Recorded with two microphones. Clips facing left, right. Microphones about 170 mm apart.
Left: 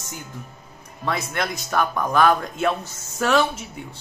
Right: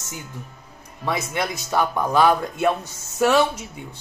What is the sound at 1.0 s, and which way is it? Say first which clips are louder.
Speech: right 1 dB; 15° right (ahead or behind).